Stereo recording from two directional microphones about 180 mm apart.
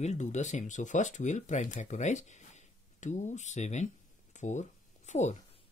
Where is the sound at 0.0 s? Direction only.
40° left (ahead or behind).